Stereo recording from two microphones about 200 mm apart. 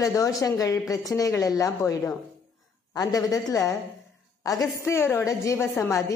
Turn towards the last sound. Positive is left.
turn(degrees=10)  # may be behind; listen again after turning